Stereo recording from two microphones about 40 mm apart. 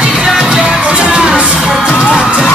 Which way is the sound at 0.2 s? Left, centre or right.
Centre.